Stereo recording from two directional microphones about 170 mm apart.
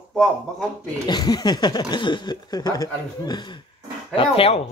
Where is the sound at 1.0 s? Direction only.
25° left (ahead or behind).